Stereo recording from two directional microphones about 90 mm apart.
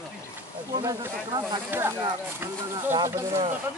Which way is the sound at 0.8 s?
50° right (ahead or behind).